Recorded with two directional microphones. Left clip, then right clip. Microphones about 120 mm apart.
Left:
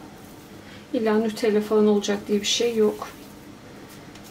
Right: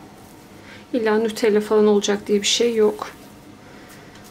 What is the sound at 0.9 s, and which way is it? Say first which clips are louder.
Speech: right 3 dB; 40° right (ahead or behind).